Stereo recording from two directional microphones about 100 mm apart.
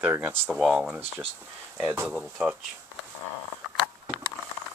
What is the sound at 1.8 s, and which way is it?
Speech, 15° right (ahead or behind).